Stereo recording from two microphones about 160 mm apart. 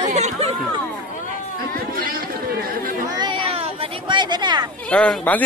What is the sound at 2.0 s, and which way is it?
Chatter, 65° right (ahead or behind).